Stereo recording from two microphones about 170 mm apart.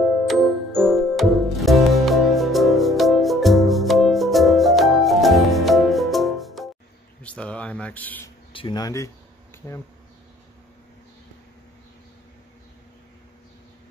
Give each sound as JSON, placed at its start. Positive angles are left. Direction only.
{"t": 0.3, "sound": "music", "side_deg": 0}
{"t": 7.2, "sound": "a sound", "side_deg": 5}
{"t": 8.5, "sound": "speech", "side_deg": 25}